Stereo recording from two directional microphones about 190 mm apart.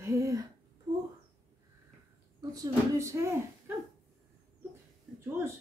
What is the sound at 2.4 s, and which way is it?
Speech, 20° right (ahead or behind).